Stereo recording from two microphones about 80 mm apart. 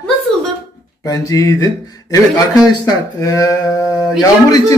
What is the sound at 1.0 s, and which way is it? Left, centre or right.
A man's voice, left.